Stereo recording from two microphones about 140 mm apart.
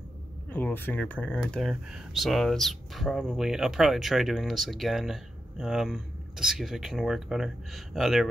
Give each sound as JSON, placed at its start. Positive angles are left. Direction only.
{"t": 0.5, "sound": "speech", "side_deg": 10}